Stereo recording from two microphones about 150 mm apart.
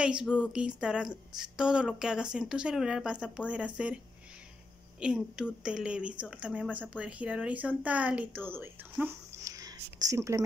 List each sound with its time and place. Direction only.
0.0 s a woman's voice: 5° right (ahead or behind)
5.0 s speech: 5° right (ahead or behind)
9.0 s a sound: 20° right (ahead or behind)